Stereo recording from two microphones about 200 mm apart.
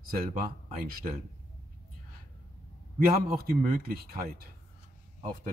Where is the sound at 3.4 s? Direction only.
45° right (ahead or behind).